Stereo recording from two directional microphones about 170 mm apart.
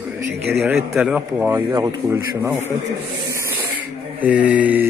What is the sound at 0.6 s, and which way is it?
A man's voice, 5° right (ahead or behind).